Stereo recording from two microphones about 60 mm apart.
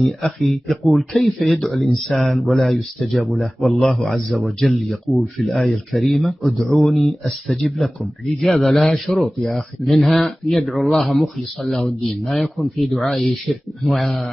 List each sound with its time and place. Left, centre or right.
0.4 s speech: centre